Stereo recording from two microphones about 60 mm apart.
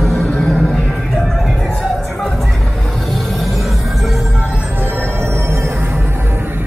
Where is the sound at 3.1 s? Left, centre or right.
Centre.